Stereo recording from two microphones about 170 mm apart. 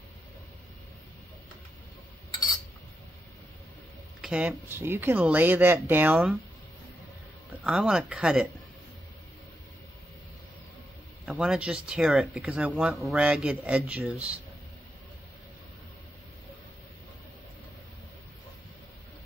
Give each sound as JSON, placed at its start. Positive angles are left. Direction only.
{"t": 4.2, "sound": "speech", "side_deg": -5}
{"t": 7.6, "sound": "speech", "side_deg": -5}
{"t": 11.2, "sound": "speech", "side_deg": -5}